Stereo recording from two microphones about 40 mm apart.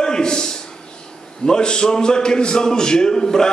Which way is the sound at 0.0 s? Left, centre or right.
Centre.